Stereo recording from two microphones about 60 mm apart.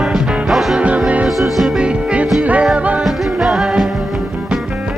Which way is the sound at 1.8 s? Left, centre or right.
Centre.